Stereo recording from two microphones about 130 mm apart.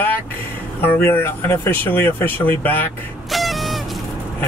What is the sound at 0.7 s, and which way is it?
Speech, 15° left (ahead or behind).